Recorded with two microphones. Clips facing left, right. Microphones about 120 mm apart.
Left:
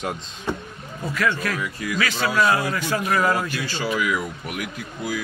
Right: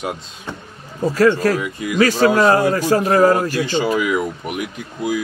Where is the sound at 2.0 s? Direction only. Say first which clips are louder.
Right 9 dB; 40° right (ahead or behind).